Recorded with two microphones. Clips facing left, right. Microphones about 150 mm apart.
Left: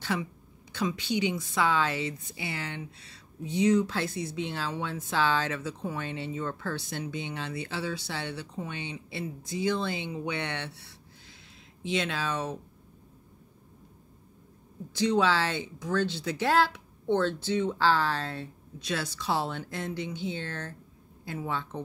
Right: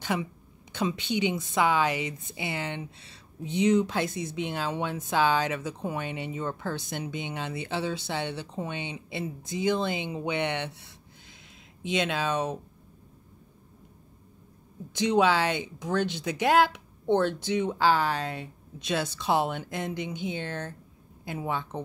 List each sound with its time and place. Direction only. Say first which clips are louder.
0.0 s a woman's voice: right 2 dB; 20° right (ahead or behind)
14.9 s speech: right 2 dB; 20° right (ahead or behind)